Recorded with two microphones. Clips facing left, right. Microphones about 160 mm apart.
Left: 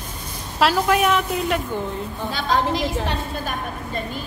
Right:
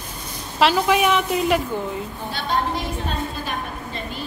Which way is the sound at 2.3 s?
90° left.